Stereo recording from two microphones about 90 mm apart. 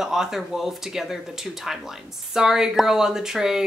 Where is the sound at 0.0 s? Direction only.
5° right (ahead or behind).